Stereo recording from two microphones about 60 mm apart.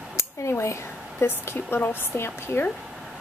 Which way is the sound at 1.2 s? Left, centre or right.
Left.